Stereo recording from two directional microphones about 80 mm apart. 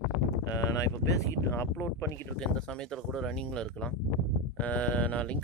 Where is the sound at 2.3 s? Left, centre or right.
Centre.